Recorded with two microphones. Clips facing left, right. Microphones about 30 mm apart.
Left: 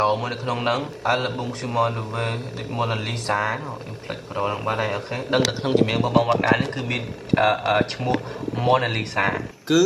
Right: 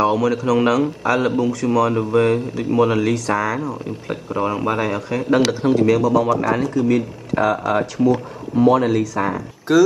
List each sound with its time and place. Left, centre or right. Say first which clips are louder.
0.0 s a man's voice: right 5 dB; left
4.3 s speech: right 4 dB; centre
4.7 s a man's voice: right 4 dB; left
9.7 s speech: right 4 dB; centre